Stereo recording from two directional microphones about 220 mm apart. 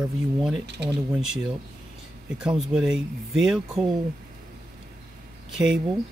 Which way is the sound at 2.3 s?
5° right (ahead or behind).